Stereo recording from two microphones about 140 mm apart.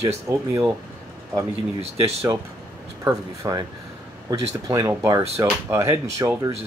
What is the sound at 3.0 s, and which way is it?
Speech, 25° right (ahead or behind).